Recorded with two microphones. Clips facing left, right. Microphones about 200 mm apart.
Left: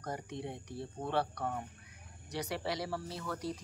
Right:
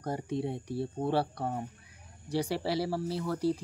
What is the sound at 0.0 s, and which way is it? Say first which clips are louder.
Speech: right 7 dB; 30° right (ahead or behind).